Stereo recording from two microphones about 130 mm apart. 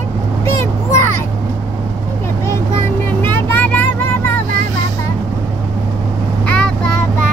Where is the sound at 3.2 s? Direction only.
15° left (ahead or behind).